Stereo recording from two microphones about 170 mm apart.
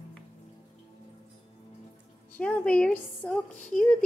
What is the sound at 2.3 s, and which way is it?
A woman's voice, 10° left (ahead or behind).